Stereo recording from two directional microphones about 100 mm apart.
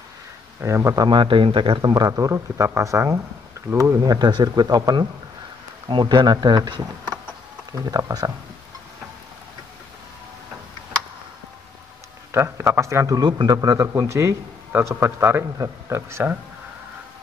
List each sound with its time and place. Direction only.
0.6 s a man's voice: 25° right (ahead or behind)
1.0 s speech: 55° right (ahead or behind)
2.0 s a man's voice: 35° right (ahead or behind)
4.0 s speech: 45° right (ahead or behind)
5.9 s speech: 50° right (ahead or behind)
12.3 s a man's voice: 25° right (ahead or behind)
13.2 s a man's voice: 45° right (ahead or behind); by 16.3 s 25° right (ahead or behind)